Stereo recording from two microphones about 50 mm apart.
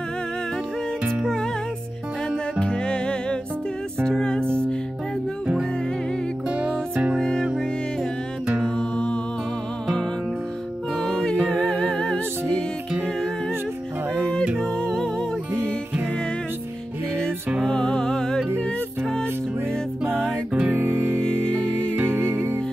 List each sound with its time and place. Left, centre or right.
2.6 s music: centre
8.6 s music: centre
11.0 s music: centre
14.6 s music: centre
15.5 s music: right
17.6 s music: centre
20.7 s music: right